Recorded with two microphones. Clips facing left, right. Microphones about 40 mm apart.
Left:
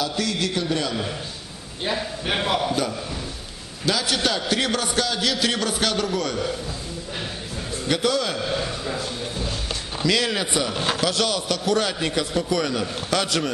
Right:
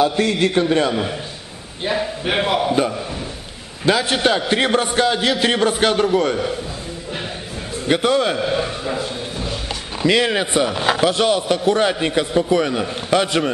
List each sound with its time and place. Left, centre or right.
0.0 s a man's voice: right
1.9 s a man's voice: centre
2.7 s a man's voice: right
7.8 s a man's voice: right